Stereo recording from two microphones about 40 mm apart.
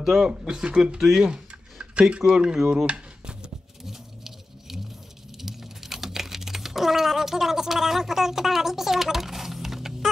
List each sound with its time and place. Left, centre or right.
0.0 s speech: centre
0.3 s speech: centre
1.2 s a sound: right
2.5 s speech: centre
2.9 s a sound: right
3.8 s patter: centre
5.4 s typing: centre